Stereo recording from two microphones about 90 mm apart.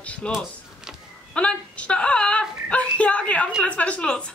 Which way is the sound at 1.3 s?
10° left (ahead or behind).